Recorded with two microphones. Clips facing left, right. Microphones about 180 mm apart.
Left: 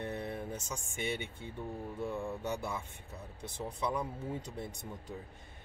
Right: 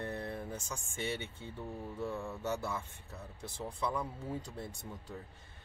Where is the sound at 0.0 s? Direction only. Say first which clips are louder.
Left 1 dB; 20° left (ahead or behind).